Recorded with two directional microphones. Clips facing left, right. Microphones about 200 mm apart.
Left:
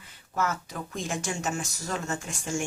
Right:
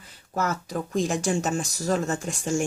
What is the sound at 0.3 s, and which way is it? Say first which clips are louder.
Speech: right 3 dB; 40° right (ahead or behind).